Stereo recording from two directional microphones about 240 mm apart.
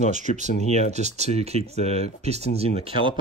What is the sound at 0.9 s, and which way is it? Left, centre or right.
Speech, right.